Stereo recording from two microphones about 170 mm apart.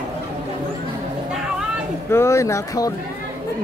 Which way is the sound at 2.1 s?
15° left (ahead or behind).